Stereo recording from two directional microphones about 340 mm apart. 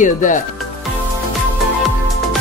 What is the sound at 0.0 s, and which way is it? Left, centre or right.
Speech, left.